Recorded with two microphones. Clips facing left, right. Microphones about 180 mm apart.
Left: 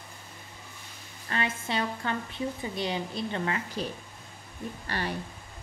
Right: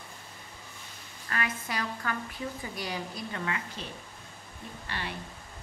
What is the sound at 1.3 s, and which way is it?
Speech, 25° left (ahead or behind).